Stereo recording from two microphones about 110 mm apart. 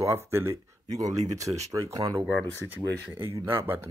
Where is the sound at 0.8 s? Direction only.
35° right (ahead or behind).